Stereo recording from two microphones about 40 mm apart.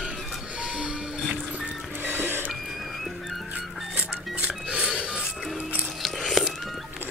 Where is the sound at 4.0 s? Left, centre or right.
Right.